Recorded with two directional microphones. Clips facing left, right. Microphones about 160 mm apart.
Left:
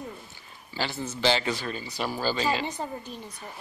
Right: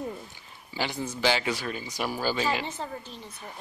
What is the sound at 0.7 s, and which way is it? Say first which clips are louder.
Speech: even; 15° right (ahead or behind).